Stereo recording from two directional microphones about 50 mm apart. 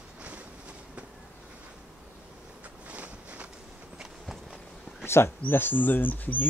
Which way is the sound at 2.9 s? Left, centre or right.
Right.